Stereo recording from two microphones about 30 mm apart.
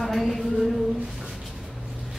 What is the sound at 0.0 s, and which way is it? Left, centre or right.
Speech, centre.